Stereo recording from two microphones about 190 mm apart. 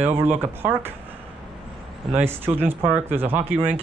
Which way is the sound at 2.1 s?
10° right (ahead or behind).